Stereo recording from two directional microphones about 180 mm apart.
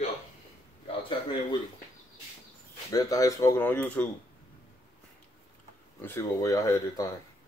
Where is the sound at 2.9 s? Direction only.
20° left (ahead or behind).